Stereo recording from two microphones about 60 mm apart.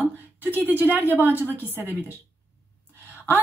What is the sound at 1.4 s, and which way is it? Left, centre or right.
Speech, left.